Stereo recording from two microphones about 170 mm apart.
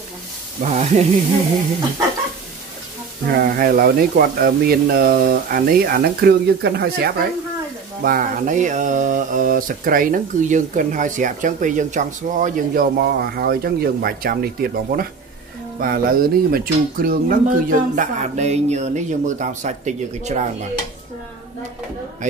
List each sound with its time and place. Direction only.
0.6 s mantra: 45° right (ahead or behind)
3.3 s speech: 60° right (ahead or behind)
8.0 s mantra: 55° right (ahead or behind)